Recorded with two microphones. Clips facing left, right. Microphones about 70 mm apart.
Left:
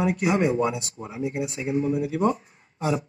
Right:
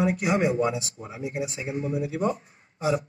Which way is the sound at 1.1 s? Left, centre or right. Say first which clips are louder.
Left 3 dB; left.